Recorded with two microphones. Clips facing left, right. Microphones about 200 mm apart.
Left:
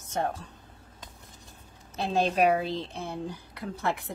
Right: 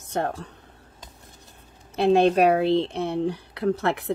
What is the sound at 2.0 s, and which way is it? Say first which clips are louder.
Speech: right 7 dB; 65° right (ahead or behind).